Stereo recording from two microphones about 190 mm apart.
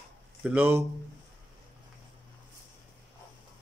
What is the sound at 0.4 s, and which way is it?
Speech, 10° right (ahead or behind).